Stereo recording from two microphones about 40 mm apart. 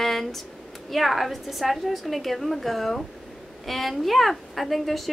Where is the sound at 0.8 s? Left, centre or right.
Centre.